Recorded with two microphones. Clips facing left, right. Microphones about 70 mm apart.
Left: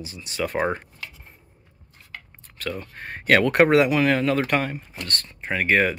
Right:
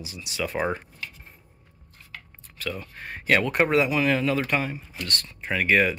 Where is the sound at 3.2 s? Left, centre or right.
Left.